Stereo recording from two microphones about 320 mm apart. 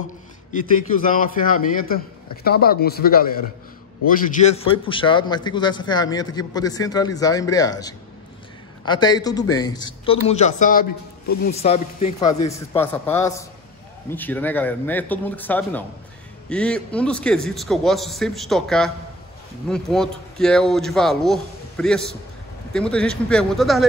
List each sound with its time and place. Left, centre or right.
0.5 s a man's voice: left; by 23.9 s centre